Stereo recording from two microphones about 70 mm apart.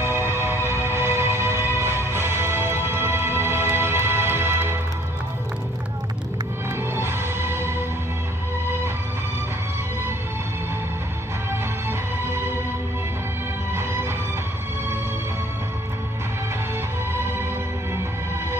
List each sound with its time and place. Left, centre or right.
0.0 s music: right
7.0 s music: right
12.3 s music: right